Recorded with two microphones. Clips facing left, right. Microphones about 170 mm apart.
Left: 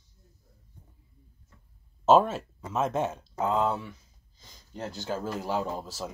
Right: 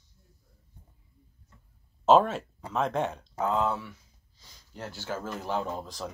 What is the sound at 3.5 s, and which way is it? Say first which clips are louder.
Speech: left 2 dB; 15° left (ahead or behind).